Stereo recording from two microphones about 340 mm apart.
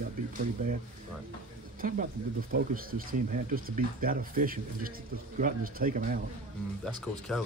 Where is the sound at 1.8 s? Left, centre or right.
Right.